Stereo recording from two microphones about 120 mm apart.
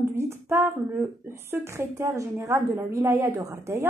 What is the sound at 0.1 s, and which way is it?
A woman's voice, 20° right (ahead or behind).